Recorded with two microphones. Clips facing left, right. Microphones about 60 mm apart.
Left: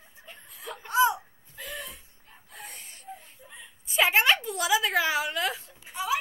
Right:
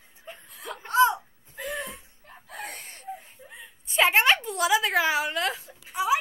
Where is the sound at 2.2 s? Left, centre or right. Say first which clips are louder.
Right 7 dB; right.